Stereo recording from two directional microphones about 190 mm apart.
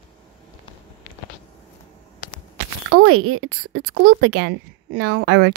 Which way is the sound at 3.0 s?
90° right.